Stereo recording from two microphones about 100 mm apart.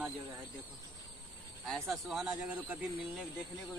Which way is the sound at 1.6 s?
Centre (ahead or behind).